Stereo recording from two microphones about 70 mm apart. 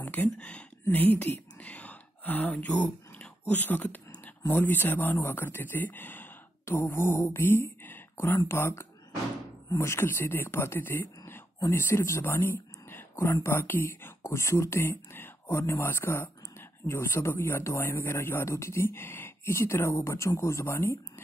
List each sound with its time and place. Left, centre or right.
0.0 s speech: left
6.6 s speech: left
7.8 s a sound: left
8.5 s speech: left
14.3 s speech: left